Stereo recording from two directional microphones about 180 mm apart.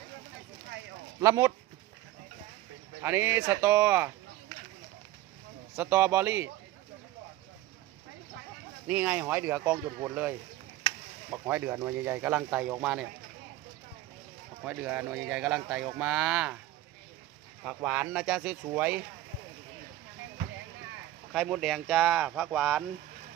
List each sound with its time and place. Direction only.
1.2 s speech: 15° right (ahead or behind)
3.0 s speech: 10° right (ahead or behind)
5.8 s speech: 10° right (ahead or behind)
8.8 s speech: 10° right (ahead or behind)
14.6 s speech: 5° right (ahead or behind)
17.6 s speech: 5° right (ahead or behind)
21.3 s speech: centre (ahead or behind)